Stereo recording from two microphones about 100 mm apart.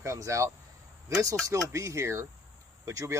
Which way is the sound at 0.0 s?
30° right (ahead or behind).